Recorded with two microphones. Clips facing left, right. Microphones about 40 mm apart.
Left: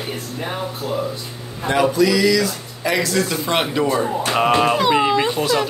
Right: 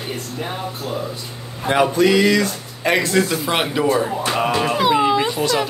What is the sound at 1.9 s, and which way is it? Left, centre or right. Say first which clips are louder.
Speech: right 2 dB; right.